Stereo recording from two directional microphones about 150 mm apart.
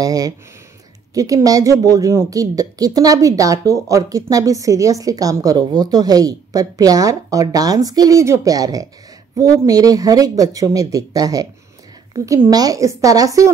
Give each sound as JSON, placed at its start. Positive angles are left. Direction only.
{"t": 0.0, "sound": "a woman's voice", "side_deg": -25}
{"t": 12.4, "sound": "a woman's voice", "side_deg": -25}